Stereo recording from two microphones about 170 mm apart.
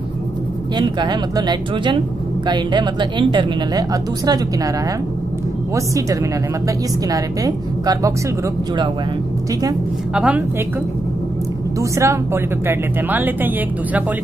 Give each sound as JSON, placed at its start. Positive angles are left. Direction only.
{"t": 0.7, "sound": "a woman's voice", "side_deg": -25}
{"t": 7.1, "sound": "a woman's voice", "side_deg": -20}
{"t": 10.1, "sound": "speech", "side_deg": -5}
{"t": 11.8, "sound": "speech", "side_deg": -15}